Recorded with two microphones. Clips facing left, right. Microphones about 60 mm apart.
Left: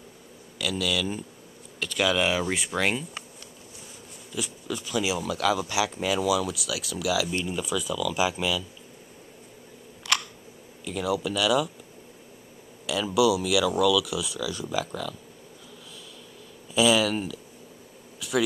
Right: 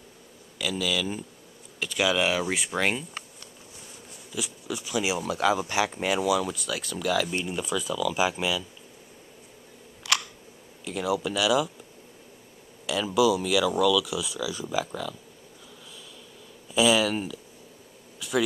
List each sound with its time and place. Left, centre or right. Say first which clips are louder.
0.6 s speech: even; centre
4.3 s speech: left 1 dB; centre
6.9 s speech: even; centre
7.2 s speech: left 1 dB; centre
10.1 s a sound: even; centre
10.9 s speech: even; centre
12.8 s speech: even; centre
16.7 s speech: even; centre
18.2 s a sound: even; centre